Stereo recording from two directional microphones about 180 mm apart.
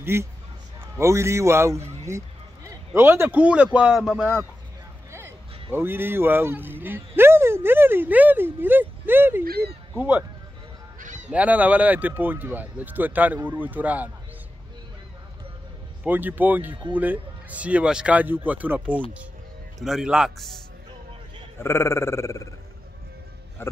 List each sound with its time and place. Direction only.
0.0 s a man's voice: 15° right (ahead or behind)
11.0 s honk: 45° right (ahead or behind)
11.2 s speech: 10° right (ahead or behind)
16.0 s a man's voice: 10° right (ahead or behind)
21.5 s speech: 15° left (ahead or behind)
23.6 s speech: 10° left (ahead or behind)